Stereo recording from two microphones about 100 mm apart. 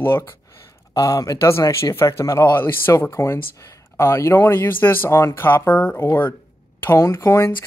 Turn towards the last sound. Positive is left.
turn(degrees=30)  # may be behind; listen again after turning